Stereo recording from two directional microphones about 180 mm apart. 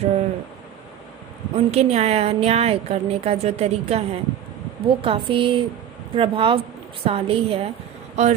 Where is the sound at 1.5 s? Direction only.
35° right (ahead or behind).